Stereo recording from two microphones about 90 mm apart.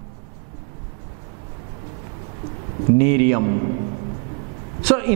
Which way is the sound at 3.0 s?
15° right (ahead or behind).